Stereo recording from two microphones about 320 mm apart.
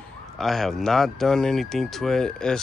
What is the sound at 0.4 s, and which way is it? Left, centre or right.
Speech, centre.